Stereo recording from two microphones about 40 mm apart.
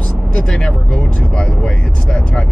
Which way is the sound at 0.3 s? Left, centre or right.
Left.